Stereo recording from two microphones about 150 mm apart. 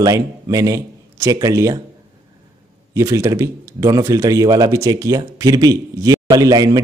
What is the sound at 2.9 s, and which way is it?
A man's voice, 20° right (ahead or behind).